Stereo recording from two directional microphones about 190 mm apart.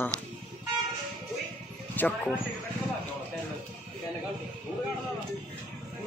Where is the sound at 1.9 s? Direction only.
10° left (ahead or behind).